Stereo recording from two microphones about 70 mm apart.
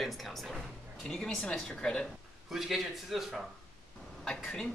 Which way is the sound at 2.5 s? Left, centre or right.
Centre.